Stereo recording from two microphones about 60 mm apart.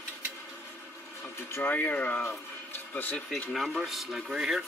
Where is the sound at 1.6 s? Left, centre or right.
Left.